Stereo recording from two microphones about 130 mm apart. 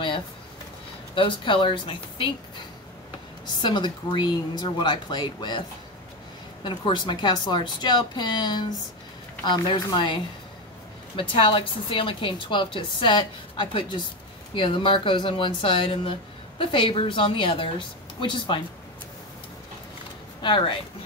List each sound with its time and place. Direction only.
1.1 s speech: 40° left (ahead or behind)
3.6 s speech: 35° left (ahead or behind)
6.6 s speech: 40° left (ahead or behind)
11.1 s speech: 40° left (ahead or behind)
20.4 s speech: 40° left (ahead or behind)